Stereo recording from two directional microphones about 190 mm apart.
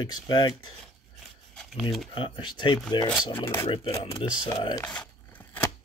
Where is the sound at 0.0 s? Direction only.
25° left (ahead or behind).